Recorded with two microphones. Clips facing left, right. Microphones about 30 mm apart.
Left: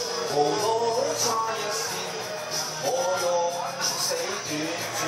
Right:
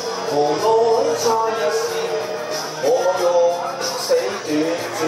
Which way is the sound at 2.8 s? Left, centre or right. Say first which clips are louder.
Right 9 dB; right.